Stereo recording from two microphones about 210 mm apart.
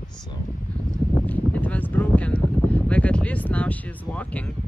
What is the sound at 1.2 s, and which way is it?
Speech, 5° left (ahead or behind).